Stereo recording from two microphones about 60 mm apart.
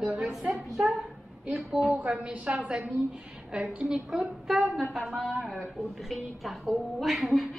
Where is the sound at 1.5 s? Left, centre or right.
Centre.